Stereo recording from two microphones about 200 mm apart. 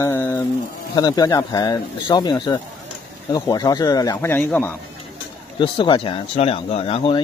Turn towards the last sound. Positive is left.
turn(degrees=25)  # may be behind; listen again after turning